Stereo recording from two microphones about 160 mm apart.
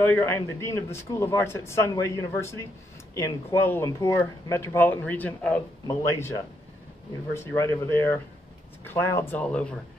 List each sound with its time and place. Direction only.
0.0 s speech: 15° left (ahead or behind)
7.3 s speech: 15° left (ahead or behind)